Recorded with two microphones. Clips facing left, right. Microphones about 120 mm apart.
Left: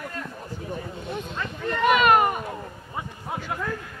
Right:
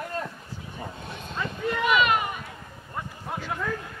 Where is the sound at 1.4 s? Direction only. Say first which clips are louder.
Right 3 dB; 5° right (ahead or behind).